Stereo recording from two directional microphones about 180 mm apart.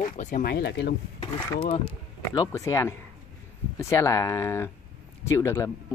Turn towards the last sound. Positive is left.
turn(degrees=15)  # may be behind; listen again after turning